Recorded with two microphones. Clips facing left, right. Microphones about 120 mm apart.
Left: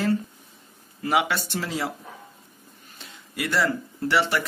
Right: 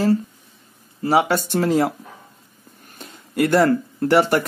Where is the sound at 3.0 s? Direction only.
50° right (ahead or behind).